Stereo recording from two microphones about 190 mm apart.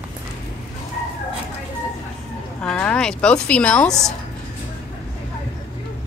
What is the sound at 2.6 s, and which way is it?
A woman's voice, 5° left (ahead or behind).